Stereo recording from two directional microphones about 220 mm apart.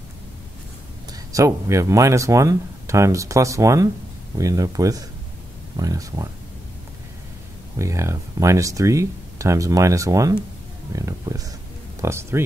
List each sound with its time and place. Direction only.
1.1 s speech: 15° right (ahead or behind)
7.8 s speech: 15° right (ahead or behind)